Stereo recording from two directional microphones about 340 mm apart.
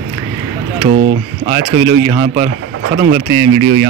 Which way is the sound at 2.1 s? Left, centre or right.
Centre.